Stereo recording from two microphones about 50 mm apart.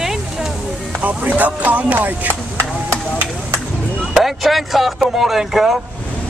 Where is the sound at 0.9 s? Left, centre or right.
Right.